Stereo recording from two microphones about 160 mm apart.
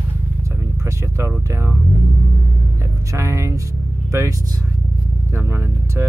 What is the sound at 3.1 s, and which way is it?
Speech, 20° right (ahead or behind).